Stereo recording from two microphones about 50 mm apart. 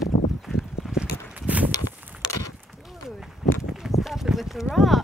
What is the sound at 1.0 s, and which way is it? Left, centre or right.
Walk, right.